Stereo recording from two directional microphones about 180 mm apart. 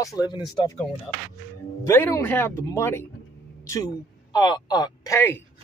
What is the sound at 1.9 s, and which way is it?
A man's voice, 15° left (ahead or behind).